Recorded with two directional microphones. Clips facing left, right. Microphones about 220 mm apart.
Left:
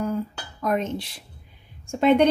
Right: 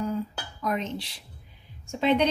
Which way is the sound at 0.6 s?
50° left (ahead or behind).